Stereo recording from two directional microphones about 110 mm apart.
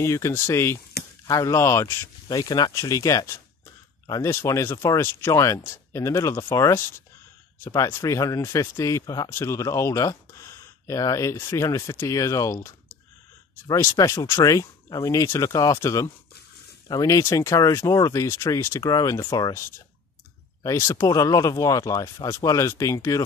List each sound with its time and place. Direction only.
0.0 s speech: 25° left (ahead or behind)
2.2 s speech: 35° left (ahead or behind)
20.6 s speech: 30° left (ahead or behind)